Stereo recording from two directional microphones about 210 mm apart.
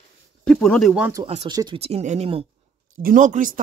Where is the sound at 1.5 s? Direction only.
20° right (ahead or behind).